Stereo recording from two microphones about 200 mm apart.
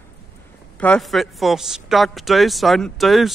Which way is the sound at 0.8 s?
5° left (ahead or behind).